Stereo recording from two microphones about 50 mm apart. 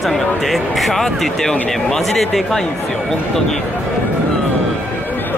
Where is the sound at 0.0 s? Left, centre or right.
Centre.